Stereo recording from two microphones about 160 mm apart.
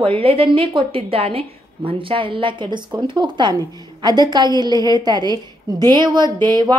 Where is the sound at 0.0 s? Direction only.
35° right (ahead or behind).